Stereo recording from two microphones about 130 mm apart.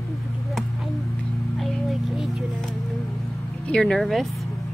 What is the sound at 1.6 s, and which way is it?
Music, centre (ahead or behind).